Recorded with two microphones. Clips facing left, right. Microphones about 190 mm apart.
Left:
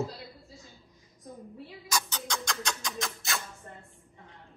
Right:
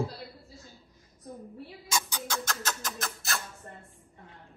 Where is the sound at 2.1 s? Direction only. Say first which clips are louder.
Right 1 dB; 5° right (ahead or behind).